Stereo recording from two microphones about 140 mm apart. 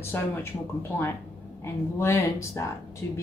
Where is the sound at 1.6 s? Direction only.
20° left (ahead or behind).